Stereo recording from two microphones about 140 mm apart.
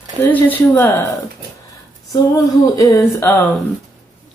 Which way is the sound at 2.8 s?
20° left (ahead or behind).